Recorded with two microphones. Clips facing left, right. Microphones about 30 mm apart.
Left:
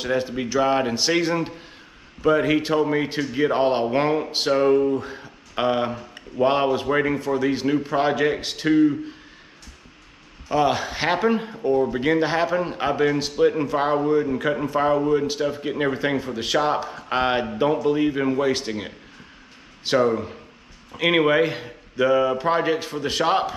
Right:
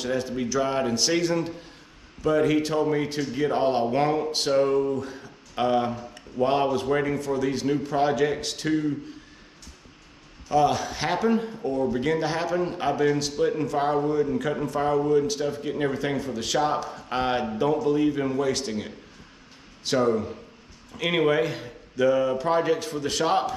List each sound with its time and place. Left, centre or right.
0.0 s speech: left
10.5 s speech: left